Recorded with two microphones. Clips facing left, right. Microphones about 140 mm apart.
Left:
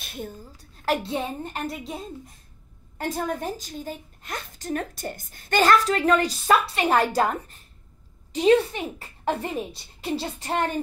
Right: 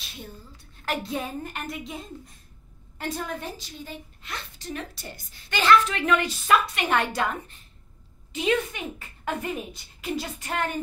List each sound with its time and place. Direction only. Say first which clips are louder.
0.0 s a woman's voice: left 6 dB; 50° left (ahead or behind)
1.0 s a woman's voice: left 2 dB; 25° left (ahead or behind)
3.0 s a woman's voice: left 4 dB; 40° left (ahead or behind)